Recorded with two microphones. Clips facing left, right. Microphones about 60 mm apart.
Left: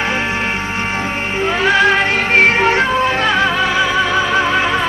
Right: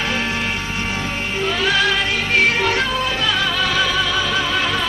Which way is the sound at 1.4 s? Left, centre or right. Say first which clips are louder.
Left 6 dB; left.